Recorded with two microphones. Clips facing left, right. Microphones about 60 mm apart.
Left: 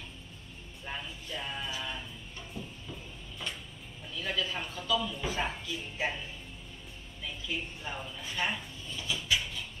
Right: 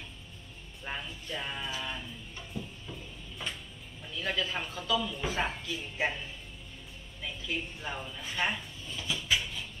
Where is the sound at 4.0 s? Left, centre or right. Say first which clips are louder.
Right 1 dB; centre.